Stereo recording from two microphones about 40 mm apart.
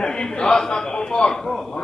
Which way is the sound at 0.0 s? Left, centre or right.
Centre.